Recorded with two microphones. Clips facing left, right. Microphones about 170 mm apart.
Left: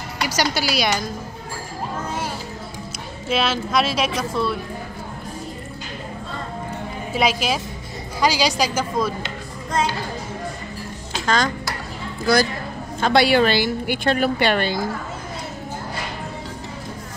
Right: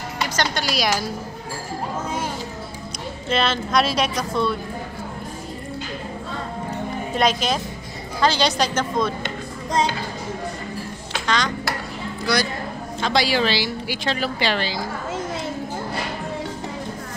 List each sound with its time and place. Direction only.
0.3 s a woman's voice: 10° left (ahead or behind)
3.3 s a woman's voice: 5° left (ahead or behind)
7.2 s a woman's voice: 5° left (ahead or behind)
11.2 s dishes: 45° left (ahead or behind)
13.0 s a woman's voice: 60° left (ahead or behind)